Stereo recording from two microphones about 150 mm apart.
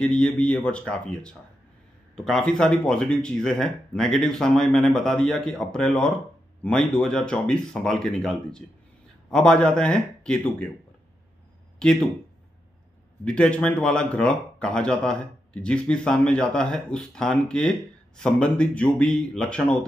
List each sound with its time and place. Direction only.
0.0 s speech: 5° left (ahead or behind)
13.2 s speech: 5° left (ahead or behind)